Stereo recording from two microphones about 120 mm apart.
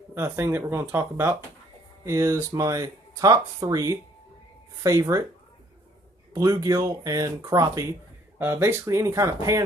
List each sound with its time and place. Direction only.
0.1 s speech: 20° right (ahead or behind)
6.3 s speech: 30° right (ahead or behind)
8.4 s speech: 20° right (ahead or behind)